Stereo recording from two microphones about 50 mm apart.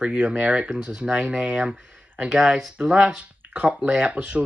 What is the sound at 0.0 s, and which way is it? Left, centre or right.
Speech, right.